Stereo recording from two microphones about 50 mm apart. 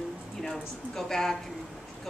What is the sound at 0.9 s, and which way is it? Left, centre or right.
Speech, centre.